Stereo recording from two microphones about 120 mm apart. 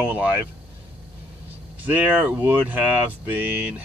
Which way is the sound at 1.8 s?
15° right (ahead or behind).